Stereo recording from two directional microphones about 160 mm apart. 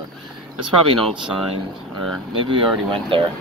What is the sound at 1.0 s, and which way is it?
Speech, centre (ahead or behind).